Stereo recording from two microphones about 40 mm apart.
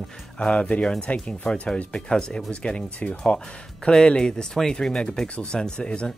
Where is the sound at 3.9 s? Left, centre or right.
Centre.